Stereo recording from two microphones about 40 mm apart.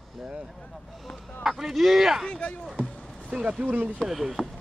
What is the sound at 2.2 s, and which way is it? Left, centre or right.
Speech, left.